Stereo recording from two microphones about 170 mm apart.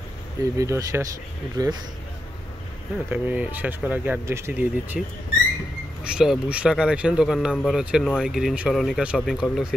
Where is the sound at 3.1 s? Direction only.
10° right (ahead or behind).